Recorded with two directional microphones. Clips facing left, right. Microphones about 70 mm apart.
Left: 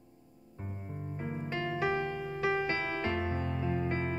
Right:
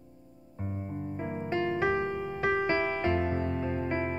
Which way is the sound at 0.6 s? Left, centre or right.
Centre.